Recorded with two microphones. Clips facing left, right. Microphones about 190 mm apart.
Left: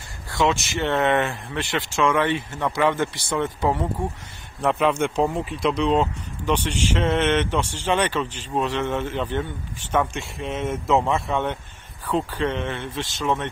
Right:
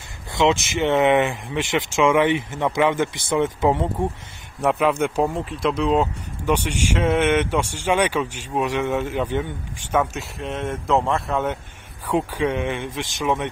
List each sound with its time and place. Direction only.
0.3 s speech: 20° right (ahead or behind)
4.6 s speech: 5° right (ahead or behind)
12.1 s speech: 10° right (ahead or behind)